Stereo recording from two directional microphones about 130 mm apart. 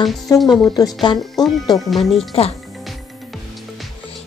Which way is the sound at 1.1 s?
Centre (ahead or behind).